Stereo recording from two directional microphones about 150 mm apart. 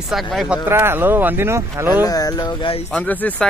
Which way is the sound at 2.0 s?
25° left (ahead or behind).